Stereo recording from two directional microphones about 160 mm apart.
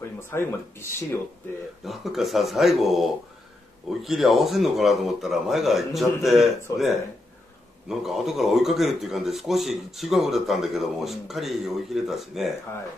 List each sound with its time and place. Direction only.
0.2 s speech: 15° left (ahead or behind)
1.9 s speech: centre (ahead or behind)